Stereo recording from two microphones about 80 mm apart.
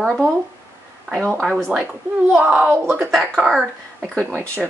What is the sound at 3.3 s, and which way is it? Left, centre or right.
Speech, centre.